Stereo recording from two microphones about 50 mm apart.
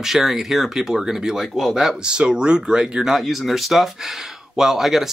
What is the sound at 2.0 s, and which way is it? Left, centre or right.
Speech, centre.